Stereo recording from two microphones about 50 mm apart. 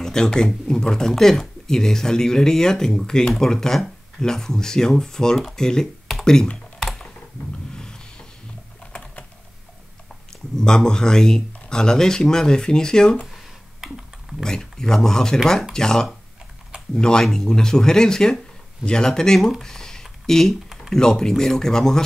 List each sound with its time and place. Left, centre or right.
0.0 s speech: centre
7.7 s a sound: centre
10.5 s speech: centre
14.4 s speech: centre